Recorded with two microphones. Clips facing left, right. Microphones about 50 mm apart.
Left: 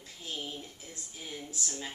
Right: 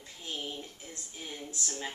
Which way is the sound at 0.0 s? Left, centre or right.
Centre.